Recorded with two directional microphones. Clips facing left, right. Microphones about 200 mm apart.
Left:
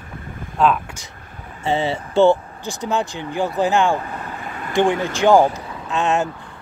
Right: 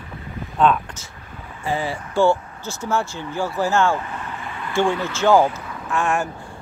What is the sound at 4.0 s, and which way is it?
Vehicle, 40° left (ahead or behind).